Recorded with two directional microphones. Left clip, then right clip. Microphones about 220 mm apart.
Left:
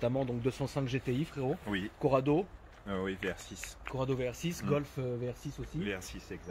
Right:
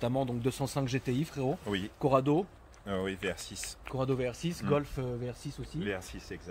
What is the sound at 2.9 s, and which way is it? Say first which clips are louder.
Speech: right 2 dB; 55° right (ahead or behind).